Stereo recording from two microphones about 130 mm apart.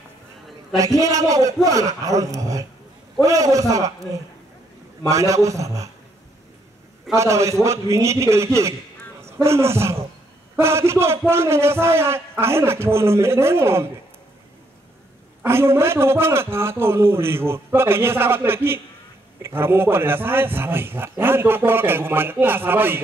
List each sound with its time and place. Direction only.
0.7 s a man's voice: 25° right (ahead or behind)
5.0 s a man's voice: 25° right (ahead or behind)
7.2 s a man's voice: 20° right (ahead or behind)
15.4 s a man's voice: 20° right (ahead or behind)